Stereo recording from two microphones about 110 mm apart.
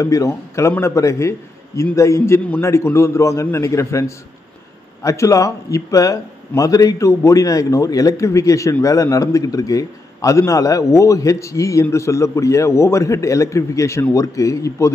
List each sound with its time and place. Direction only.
0.0 s a man's voice: 30° left (ahead or behind)
5.0 s a man's voice: 30° left (ahead or behind)